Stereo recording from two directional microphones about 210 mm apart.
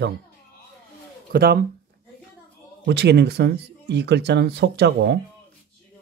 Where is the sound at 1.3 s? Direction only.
45° right (ahead or behind).